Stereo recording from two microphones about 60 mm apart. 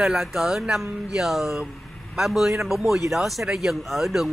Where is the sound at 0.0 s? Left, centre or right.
Centre.